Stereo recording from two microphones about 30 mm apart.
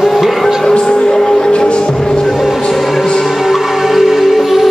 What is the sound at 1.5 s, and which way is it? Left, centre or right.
Music, left.